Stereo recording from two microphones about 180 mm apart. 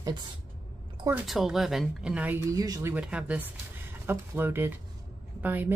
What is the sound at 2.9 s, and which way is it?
Speech, 5° right (ahead or behind).